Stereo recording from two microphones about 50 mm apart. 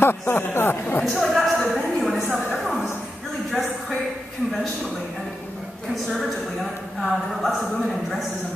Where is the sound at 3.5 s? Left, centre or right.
Centre.